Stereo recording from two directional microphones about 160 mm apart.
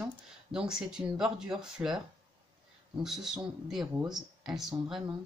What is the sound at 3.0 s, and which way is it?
Speech, centre (ahead or behind).